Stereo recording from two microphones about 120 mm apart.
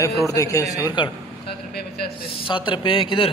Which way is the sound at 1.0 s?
40° left (ahead or behind).